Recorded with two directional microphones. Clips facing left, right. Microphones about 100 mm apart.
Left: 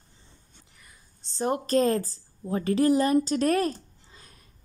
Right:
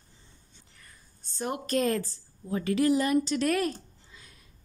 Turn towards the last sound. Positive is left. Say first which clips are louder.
# left 1 dB
turn(degrees=40)  # may be behind; listen again after turning